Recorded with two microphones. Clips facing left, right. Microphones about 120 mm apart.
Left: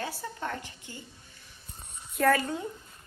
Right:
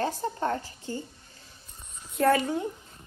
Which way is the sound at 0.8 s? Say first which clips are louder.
Right 10 dB; 40° right (ahead or behind).